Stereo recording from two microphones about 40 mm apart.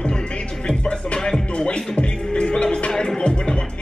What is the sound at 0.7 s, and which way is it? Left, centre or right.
Music, left.